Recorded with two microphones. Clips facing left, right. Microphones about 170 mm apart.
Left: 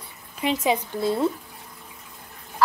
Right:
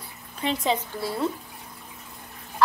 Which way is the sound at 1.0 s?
20° left (ahead or behind).